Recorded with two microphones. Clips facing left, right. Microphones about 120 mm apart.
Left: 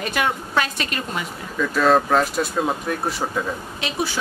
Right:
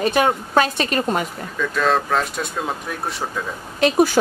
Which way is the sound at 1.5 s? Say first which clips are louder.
Left 2 dB; 5° left (ahead or behind).